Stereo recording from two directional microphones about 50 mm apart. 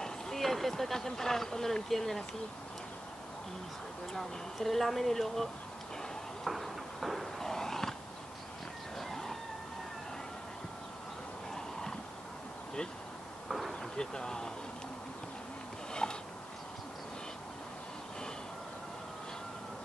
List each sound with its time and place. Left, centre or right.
0.0 s speech: centre
4.1 s speech: centre
6.4 s a sound: centre
8.9 s chicken: centre
13.5 s a sound: centre
13.9 s speech: centre
15.9 s mechanisms: centre